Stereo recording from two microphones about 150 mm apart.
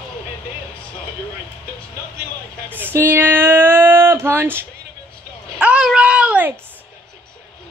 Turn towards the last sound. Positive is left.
turn(degrees=-10)  # may be behind; listen again after turning